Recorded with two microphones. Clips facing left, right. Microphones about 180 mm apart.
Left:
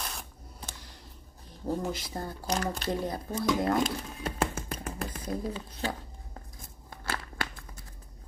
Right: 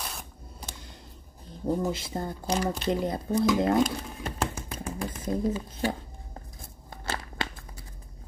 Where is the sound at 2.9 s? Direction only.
20° right (ahead or behind).